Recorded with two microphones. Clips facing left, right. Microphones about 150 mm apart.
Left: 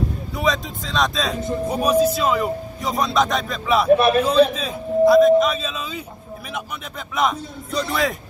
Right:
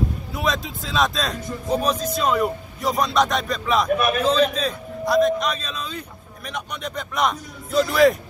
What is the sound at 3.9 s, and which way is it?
Speech, 30° left (ahead or behind).